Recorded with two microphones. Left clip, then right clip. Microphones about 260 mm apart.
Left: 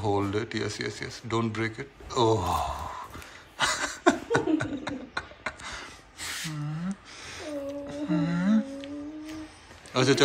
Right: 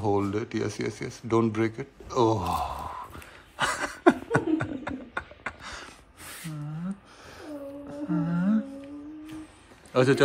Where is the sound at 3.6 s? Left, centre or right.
Centre.